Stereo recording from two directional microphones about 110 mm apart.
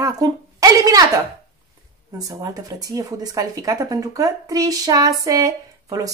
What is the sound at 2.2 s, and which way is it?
Speech, 30° right (ahead or behind).